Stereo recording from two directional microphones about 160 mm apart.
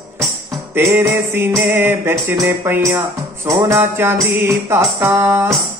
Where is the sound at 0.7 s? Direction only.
15° right (ahead or behind).